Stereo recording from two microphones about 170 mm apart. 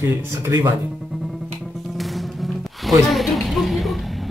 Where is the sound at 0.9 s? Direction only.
Centre (ahead or behind).